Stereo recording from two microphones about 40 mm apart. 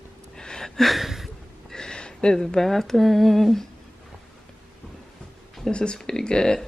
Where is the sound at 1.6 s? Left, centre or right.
Centre.